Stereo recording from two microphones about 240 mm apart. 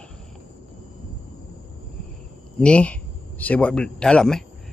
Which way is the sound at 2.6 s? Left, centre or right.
Centre.